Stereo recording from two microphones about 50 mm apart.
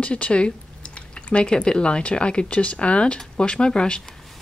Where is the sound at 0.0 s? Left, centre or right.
Left.